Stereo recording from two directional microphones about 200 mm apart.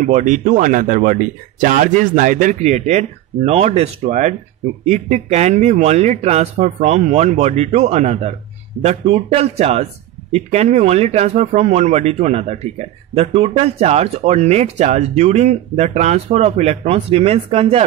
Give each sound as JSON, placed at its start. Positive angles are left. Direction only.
{"t": 0.0, "sound": "speech", "side_deg": -40}